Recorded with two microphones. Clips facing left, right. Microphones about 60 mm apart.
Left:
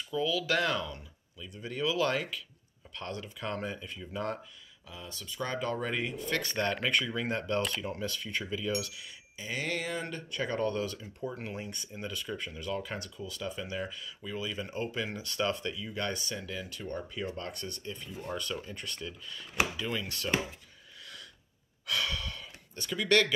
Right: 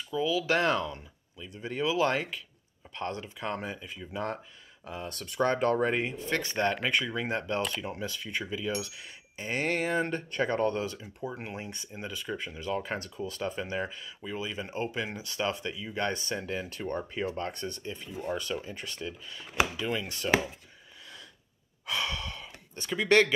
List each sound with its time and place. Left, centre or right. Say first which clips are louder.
0.1 s speech: right 2 dB; centre
4.8 s speech: right 6 dB; right
5.8 s speech: right 5 dB; right; by 8.8 s centre
8.8 s speech: even; right
21.8 s gasp: right 1 dB; right